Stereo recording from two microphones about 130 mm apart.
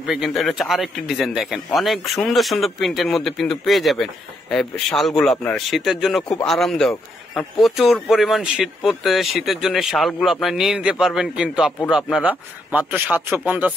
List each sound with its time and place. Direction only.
0.0 s a man's voice: 5° right (ahead or behind)